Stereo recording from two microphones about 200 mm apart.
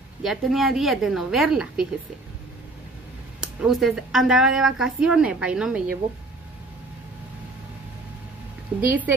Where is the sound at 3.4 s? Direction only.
Centre (ahead or behind).